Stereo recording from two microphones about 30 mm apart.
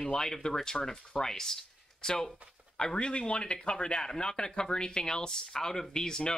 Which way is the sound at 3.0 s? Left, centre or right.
Left.